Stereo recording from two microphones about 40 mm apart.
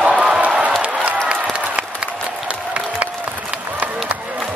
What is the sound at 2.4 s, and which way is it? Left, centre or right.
Applause, right.